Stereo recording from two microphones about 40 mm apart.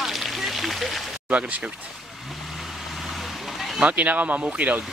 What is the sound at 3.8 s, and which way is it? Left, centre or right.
Speech, right.